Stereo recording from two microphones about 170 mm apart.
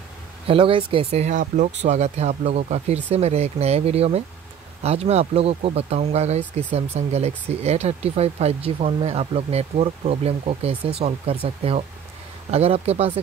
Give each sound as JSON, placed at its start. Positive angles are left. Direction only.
{"t": 0.5, "sound": "speech", "side_deg": -30}